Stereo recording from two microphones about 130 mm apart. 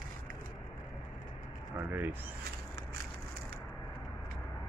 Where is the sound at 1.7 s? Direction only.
15° right (ahead or behind).